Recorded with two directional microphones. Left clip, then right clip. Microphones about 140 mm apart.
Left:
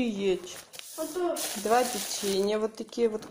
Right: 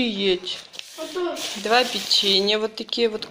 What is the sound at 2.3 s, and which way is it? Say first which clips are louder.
Speech: right 5 dB; 15° left (ahead or behind).